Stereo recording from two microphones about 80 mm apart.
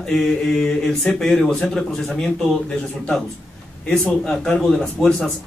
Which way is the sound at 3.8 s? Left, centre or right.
Centre.